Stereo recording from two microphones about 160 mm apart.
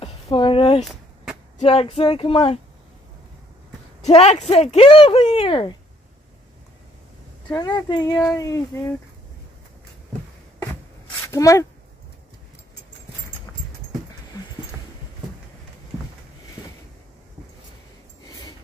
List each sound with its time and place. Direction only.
0.0 s a sound: 35° left (ahead or behind)
0.7 s a sound: centre (ahead or behind)
1.6 s speech: 35° left (ahead or behind)
4.0 s speech: 40° left (ahead or behind)
7.5 s speech: 25° left (ahead or behind)
11.2 s speech: 20° left (ahead or behind)
13.5 s dog: 15° left (ahead or behind)